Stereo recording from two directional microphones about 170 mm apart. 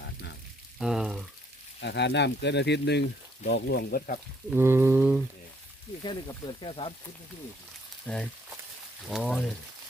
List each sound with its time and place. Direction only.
0.7 s speech: 5° right (ahead or behind)
1.8 s speech: 90° left; by 4.2 s 60° left (ahead or behind)
4.5 s a sound: 15° right (ahead or behind)
6.0 s speech: 25° left (ahead or behind)
8.1 s speech: 5° left (ahead or behind)